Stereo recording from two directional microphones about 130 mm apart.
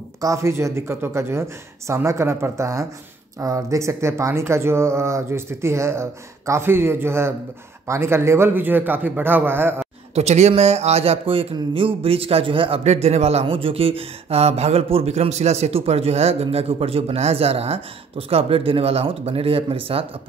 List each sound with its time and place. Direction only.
0.2 s a man's voice: 25° right (ahead or behind)
10.1 s speech: 60° right (ahead or behind)